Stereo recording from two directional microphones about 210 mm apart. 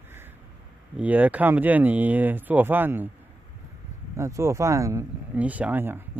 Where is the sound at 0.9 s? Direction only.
5° right (ahead or behind).